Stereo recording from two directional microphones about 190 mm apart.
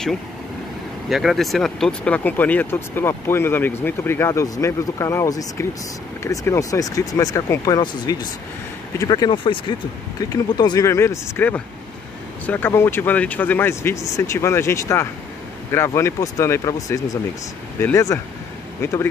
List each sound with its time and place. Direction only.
1.0 s speech: centre (ahead or behind); by 19.0 s 15° left (ahead or behind)